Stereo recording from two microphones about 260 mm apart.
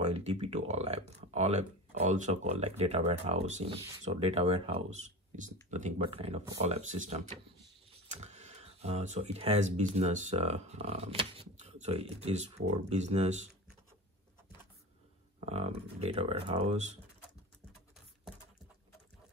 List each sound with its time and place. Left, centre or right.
0.0 s speech: right
15.4 s speech: right